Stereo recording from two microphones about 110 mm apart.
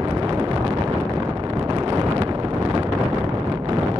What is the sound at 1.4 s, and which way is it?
Wind noise, 35° right (ahead or behind).